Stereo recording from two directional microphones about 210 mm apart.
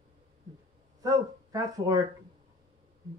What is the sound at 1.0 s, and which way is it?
Speech, 15° right (ahead or behind).